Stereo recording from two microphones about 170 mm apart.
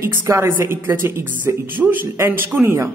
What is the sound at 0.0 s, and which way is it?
A man's voice, 15° right (ahead or behind).